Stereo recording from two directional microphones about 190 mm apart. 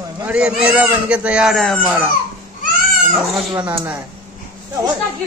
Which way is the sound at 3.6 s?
5° right (ahead or behind).